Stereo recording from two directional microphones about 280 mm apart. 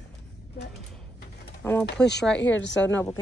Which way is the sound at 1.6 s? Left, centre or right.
Centre.